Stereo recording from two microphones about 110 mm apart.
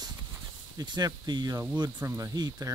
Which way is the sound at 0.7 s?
40° right (ahead or behind).